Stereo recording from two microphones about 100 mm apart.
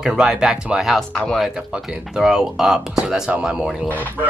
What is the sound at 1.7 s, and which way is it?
Speech, 5° right (ahead or behind).